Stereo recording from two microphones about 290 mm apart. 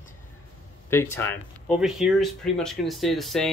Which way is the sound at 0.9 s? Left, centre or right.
Centre.